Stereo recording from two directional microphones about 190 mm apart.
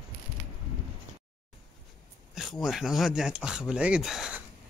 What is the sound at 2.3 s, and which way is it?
Speech, centre (ahead or behind).